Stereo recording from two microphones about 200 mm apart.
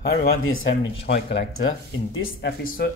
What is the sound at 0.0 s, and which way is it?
Speech, 50° left (ahead or behind).